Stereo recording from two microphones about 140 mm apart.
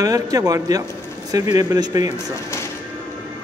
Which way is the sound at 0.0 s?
25° right (ahead or behind).